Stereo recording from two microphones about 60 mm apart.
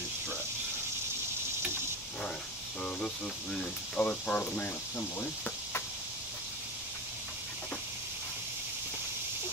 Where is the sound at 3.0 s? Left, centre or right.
Centre.